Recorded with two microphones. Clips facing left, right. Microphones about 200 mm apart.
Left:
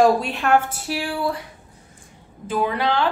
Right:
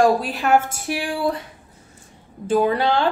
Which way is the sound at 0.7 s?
15° right (ahead or behind).